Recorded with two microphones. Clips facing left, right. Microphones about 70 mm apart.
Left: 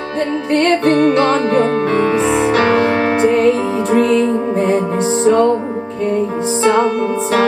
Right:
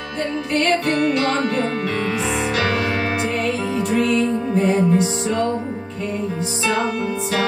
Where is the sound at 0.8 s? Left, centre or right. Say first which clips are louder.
Left 7 dB; left.